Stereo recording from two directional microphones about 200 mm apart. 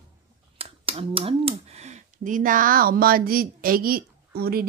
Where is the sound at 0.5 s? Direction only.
30° right (ahead or behind); by 4.0 s 45° right (ahead or behind).